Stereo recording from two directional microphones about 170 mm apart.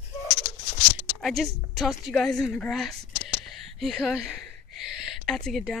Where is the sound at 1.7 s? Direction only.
Centre (ahead or behind).